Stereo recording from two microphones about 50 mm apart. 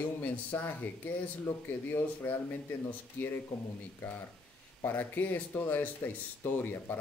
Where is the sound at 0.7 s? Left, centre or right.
Left.